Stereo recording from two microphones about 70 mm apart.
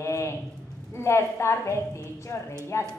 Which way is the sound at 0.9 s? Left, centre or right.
Left.